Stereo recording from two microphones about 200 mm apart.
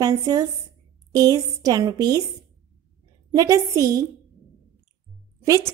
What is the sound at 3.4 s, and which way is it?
Speech, 15° right (ahead or behind).